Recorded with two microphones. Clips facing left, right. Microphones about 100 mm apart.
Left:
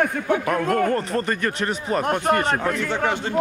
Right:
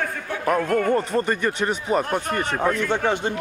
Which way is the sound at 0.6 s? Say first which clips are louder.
Left 1 dB; 20° left (ahead or behind).